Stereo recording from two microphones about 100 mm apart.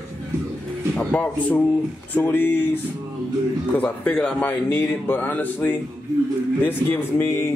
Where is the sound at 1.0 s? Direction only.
15° left (ahead or behind).